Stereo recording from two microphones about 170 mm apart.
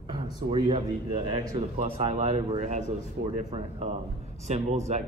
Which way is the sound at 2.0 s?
40° right (ahead or behind).